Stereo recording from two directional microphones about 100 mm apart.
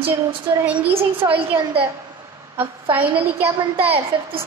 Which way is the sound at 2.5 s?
20° right (ahead or behind).